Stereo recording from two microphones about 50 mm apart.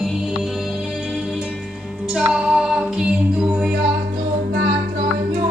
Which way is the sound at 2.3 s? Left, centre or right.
Centre.